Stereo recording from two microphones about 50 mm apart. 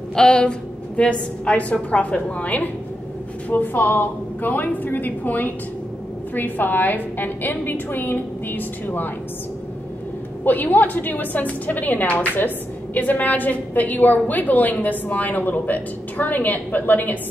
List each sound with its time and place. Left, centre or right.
0.1 s a woman's voice: centre; by 9.1 s left
10.4 s a woman's voice: left